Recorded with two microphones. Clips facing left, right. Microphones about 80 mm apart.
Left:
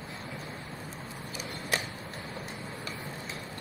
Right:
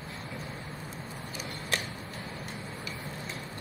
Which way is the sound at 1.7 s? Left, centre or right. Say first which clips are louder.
Left 1 dB; centre.